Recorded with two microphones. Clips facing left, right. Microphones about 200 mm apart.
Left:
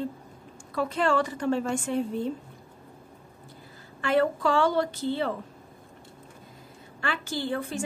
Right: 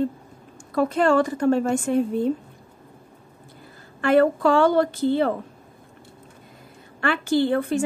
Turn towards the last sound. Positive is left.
turn(degrees=-60)  # may be behind; listen again after turning